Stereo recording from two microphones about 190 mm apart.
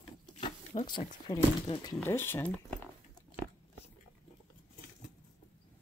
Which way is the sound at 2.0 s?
10° left (ahead or behind).